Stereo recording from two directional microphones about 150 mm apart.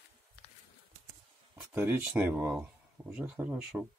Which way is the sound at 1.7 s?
15° right (ahead or behind).